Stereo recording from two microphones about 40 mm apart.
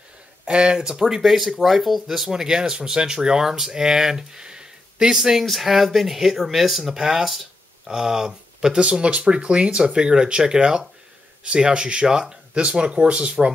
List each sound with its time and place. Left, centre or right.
0.5 s speech: right
1.2 s speech: centre
5.4 s speech: centre
8.0 s speech: centre